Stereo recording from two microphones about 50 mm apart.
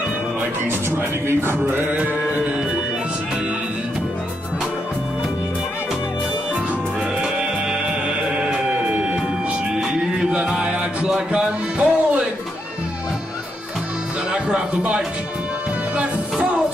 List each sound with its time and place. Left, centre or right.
1.2 s mantra: right
8.4 s music: right
10.1 s music: right
14.3 s speech: right
16.0 s music: right